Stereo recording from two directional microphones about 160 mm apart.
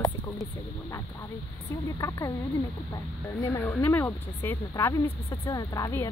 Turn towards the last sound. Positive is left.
turn(degrees=20)  # may be behind; listen again after turning